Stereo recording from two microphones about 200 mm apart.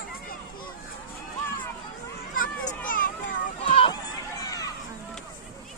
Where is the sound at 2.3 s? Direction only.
45° left (ahead or behind).